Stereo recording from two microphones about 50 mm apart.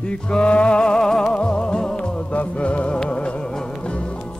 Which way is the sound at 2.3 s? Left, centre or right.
Left.